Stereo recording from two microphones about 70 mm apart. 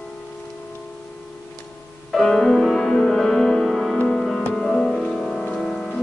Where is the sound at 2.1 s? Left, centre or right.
Centre.